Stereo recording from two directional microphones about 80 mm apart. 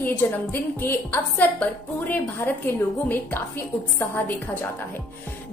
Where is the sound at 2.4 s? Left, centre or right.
Left.